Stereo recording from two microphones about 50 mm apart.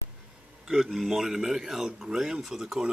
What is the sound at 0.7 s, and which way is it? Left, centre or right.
A man's voice, centre.